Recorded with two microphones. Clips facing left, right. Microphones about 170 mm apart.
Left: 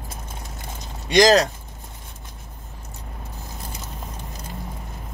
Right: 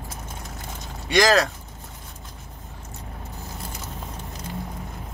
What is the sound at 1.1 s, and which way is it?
Speech, 20° left (ahead or behind).